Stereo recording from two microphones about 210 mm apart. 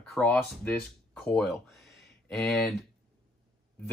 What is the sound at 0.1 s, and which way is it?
Speech, 5° left (ahead or behind).